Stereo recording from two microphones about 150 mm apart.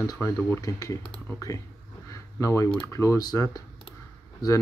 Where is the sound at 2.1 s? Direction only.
20° left (ahead or behind).